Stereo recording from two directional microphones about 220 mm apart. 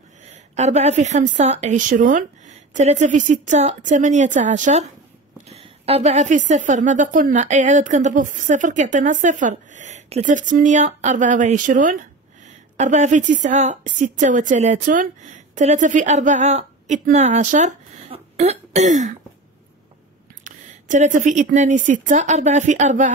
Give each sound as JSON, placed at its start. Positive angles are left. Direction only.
{"t": 0.6, "sound": "a woman's voice", "side_deg": -30}
{"t": 20.4, "sound": "a sound", "side_deg": -35}
{"t": 21.5, "sound": "a woman's voice", "side_deg": -35}